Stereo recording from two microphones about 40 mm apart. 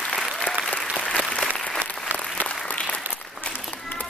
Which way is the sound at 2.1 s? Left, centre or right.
Right.